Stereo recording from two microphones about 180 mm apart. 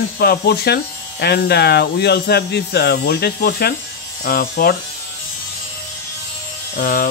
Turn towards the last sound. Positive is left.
turn(degrees=55)  # may be behind; listen again after turning